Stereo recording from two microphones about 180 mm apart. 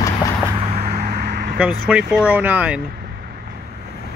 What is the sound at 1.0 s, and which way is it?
Vehicle, 65° right (ahead or behind).